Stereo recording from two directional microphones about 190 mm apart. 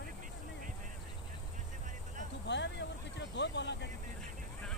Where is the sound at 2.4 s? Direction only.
65° left (ahead or behind).